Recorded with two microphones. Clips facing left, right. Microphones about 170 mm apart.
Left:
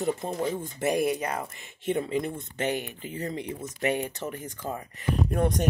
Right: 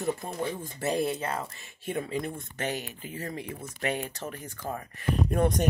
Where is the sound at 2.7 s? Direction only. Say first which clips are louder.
Left 4 dB; 55° left (ahead or behind).